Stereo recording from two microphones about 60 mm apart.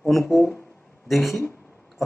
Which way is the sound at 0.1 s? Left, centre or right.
Centre.